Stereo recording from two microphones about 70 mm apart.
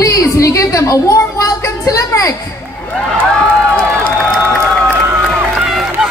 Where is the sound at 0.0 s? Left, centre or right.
Left.